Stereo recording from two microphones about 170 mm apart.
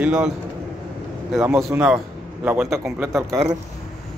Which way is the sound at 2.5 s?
15° right (ahead or behind).